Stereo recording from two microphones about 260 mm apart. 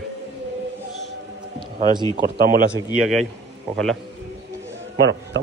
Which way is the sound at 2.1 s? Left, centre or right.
Right.